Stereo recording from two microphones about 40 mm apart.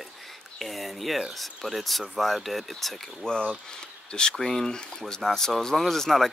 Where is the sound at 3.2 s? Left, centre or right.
Left.